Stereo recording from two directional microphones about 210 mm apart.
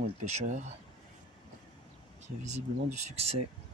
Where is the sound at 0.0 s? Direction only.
35° right (ahead or behind).